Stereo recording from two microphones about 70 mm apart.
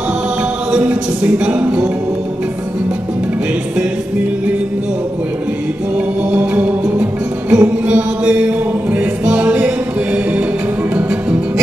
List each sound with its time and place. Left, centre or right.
0.7 s speech: centre
6.3 s music: right